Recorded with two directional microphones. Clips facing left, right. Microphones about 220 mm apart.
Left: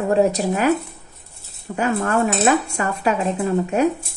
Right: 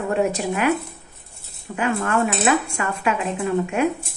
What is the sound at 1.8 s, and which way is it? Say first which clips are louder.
Speech: left 2 dB; 40° left (ahead or behind).